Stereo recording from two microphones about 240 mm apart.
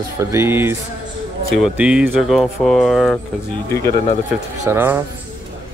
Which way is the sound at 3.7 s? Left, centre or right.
Centre.